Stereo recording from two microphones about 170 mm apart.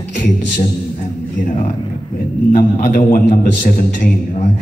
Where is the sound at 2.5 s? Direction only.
55° left (ahead or behind).